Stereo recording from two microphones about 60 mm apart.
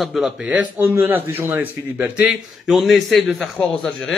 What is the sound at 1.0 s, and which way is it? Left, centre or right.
Speech, right.